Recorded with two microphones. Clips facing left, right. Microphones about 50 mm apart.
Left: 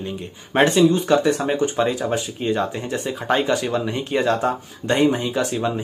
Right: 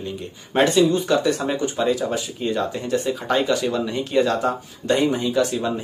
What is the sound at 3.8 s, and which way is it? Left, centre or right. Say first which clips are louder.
Speech: right 2 dB; centre.